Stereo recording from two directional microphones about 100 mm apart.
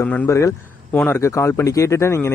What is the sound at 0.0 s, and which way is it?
A man's voice, 25° left (ahead or behind).